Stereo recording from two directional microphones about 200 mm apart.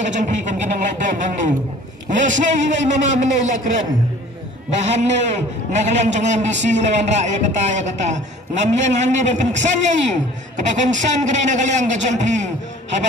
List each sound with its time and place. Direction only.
0.0 s a man's voice: 40° right (ahead or behind)